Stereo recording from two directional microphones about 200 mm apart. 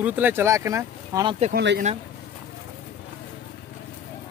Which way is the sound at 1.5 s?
50° right (ahead or behind).